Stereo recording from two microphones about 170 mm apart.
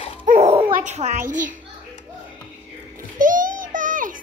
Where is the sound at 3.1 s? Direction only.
50° right (ahead or behind).